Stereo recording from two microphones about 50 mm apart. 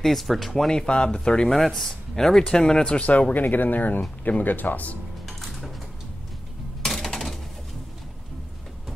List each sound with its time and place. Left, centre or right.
0.0 s speech: centre
0.8 s speech: centre
1.5 s speech: centre
3.1 s speech: left
5.2 s a sound: centre
6.8 s typewriter: centre